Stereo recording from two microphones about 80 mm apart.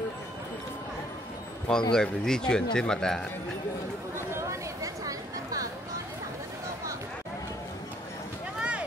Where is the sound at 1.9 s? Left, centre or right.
Centre.